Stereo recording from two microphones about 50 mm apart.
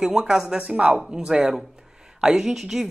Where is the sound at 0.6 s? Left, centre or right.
Right; by 2.8 s centre.